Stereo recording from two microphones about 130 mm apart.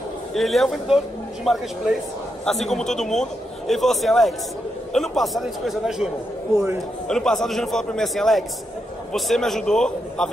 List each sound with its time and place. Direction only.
0.3 s a man's voice: centre (ahead or behind)
6.5 s a man's voice: 25° right (ahead or behind)
7.1 s a man's voice: 5° left (ahead or behind)